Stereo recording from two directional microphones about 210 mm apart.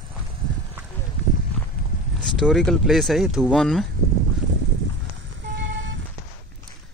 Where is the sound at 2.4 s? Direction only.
5° left (ahead or behind).